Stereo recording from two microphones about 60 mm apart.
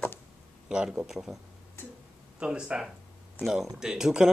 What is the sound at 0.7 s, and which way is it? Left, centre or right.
Speech, centre.